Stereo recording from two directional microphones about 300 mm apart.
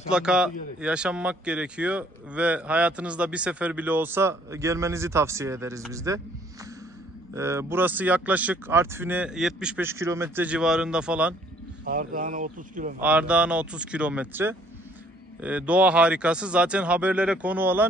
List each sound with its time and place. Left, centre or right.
0.1 s a man's voice: centre
11.8 s speech: right
13.0 s speech: centre